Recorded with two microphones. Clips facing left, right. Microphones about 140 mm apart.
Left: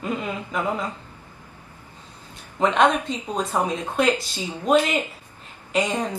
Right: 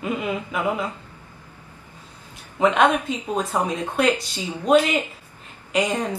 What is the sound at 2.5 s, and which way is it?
A woman's voice, 5° right (ahead or behind).